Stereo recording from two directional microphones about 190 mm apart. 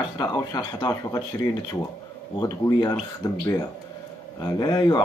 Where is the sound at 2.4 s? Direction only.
20° left (ahead or behind).